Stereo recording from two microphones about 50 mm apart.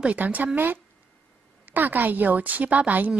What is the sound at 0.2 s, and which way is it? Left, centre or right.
Speech, right.